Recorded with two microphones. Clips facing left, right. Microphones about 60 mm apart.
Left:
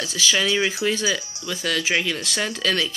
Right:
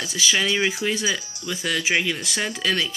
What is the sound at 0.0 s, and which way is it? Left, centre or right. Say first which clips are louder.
Speech: left 1 dB; centre.